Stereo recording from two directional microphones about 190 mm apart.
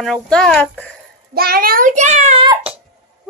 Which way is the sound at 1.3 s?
50° right (ahead or behind).